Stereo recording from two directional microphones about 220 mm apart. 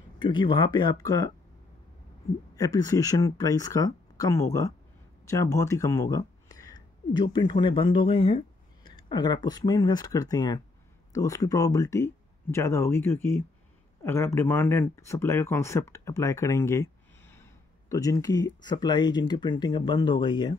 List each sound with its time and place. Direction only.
0.2 s speech: 20° left (ahead or behind)
2.5 s speech: 15° left (ahead or behind)